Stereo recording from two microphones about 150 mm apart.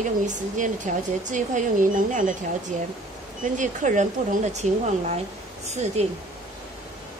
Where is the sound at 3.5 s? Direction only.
55° right (ahead or behind).